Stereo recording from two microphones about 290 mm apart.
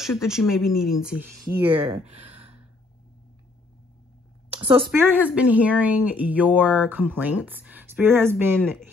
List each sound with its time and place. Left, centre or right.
0.0 s speech: centre
1.7 s speech: centre
2.1 s gasp: centre
4.6 s a woman's voice: centre
5.0 s speech: centre